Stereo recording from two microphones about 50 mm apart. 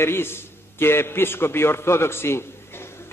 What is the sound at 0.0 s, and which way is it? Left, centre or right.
A man's voice, left.